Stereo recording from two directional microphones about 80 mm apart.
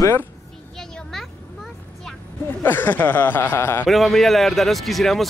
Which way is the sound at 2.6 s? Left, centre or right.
Left.